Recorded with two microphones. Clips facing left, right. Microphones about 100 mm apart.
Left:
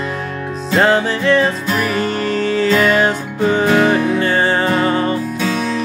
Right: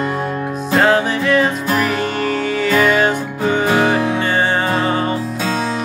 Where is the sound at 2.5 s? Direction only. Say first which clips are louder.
Left 1 dB; 10° right (ahead or behind).